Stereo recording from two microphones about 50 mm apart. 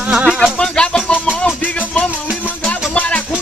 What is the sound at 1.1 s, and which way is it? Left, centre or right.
Music, left.